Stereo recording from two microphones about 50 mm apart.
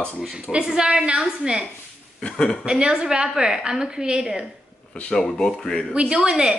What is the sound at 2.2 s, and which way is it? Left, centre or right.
Speech, centre.